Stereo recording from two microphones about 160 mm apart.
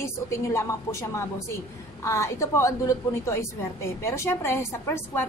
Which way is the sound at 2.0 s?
20° left (ahead or behind).